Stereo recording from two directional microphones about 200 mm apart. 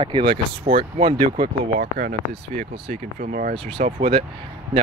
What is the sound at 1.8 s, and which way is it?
Speech, 45° right (ahead or behind).